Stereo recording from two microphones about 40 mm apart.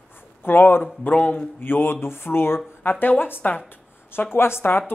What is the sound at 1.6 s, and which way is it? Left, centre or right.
Speech, left.